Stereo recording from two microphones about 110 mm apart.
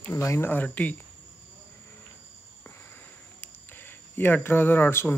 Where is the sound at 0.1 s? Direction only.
25° left (ahead or behind).